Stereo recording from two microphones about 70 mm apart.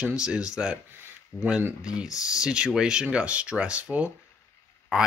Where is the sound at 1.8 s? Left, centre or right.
Centre.